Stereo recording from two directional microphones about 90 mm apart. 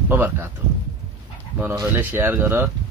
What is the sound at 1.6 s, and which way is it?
Speech, 20° right (ahead or behind).